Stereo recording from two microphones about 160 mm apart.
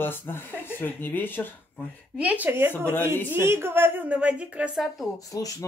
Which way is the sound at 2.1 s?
10° right (ahead or behind).